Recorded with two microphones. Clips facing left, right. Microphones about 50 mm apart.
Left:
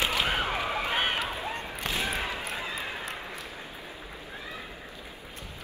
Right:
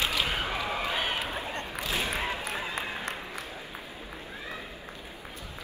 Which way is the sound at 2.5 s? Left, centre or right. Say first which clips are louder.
Right 1 dB; right.